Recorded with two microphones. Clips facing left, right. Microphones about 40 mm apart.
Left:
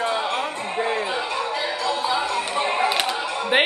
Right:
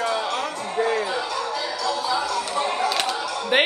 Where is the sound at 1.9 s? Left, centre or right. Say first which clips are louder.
Even; left.